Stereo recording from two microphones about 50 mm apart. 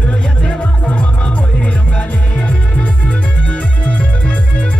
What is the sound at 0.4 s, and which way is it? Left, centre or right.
Music, centre.